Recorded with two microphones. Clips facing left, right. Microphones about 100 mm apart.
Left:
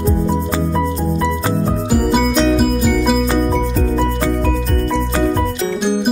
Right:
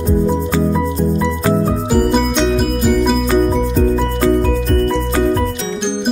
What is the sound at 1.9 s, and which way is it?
Music, 5° left (ahead or behind).